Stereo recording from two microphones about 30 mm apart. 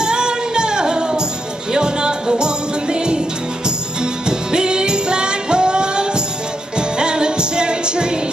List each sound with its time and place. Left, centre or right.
0.0 s music: right